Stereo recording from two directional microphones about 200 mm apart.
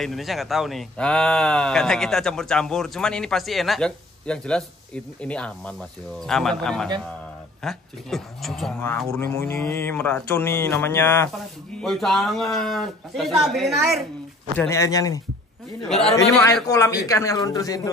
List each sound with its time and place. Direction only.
0.0 s speech: centre (ahead or behind)
8.8 s speech: 10° left (ahead or behind)
11.8 s speech: centre (ahead or behind)
14.7 s speech: 15° left (ahead or behind)
15.9 s speech: centre (ahead or behind)
16.6 s speech: 15° left (ahead or behind)